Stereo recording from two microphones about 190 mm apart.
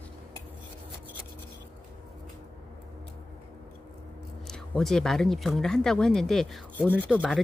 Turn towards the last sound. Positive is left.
turn(degrees=-5)  # may be behind; listen again after turning